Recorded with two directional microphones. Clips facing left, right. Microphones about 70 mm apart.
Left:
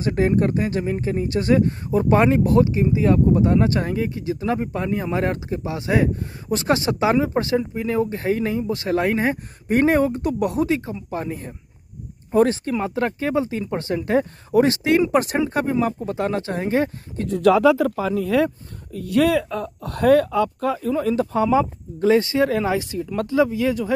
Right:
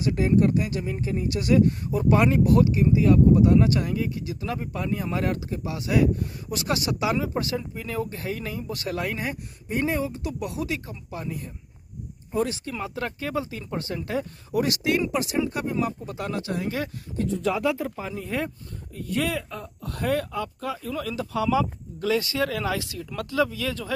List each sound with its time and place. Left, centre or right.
0.0 s speech: left
9.7 s speech: left
10.7 s speech: left
12.7 s speech: left
15.1 s speech: left
17.4 s speech: left
18.9 s speech: left
20.9 s speech: left